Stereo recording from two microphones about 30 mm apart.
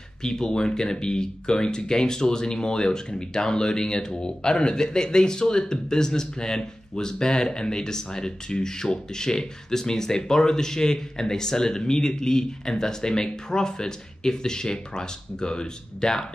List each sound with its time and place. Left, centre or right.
0.2 s a man's voice: left